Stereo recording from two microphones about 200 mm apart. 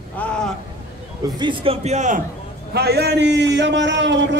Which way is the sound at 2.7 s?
55° right (ahead or behind).